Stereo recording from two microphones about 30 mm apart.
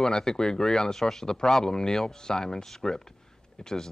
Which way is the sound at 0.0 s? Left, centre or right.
Left.